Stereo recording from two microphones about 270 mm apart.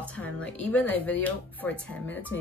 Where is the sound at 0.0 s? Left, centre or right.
Centre.